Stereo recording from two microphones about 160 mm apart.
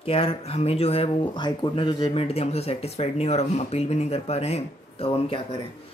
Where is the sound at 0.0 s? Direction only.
35° left (ahead or behind).